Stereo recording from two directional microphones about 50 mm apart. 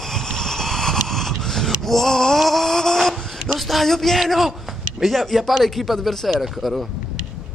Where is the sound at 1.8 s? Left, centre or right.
Centre.